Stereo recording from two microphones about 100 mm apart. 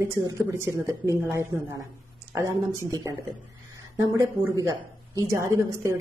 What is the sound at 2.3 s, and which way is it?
Speech, 35° right (ahead or behind).